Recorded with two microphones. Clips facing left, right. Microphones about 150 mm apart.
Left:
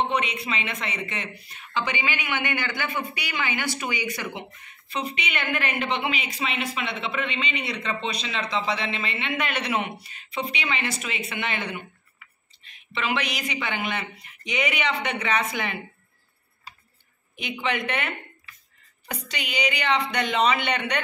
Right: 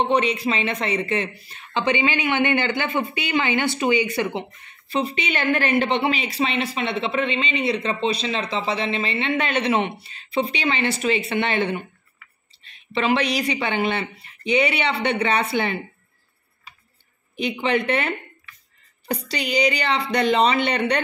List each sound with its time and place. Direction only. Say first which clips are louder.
0.1 s speech: right 7 dB; 35° right (ahead or behind)
12.9 s speech: right 7 dB; 35° right (ahead or behind)
17.4 s speech: right 6 dB; 35° right (ahead or behind)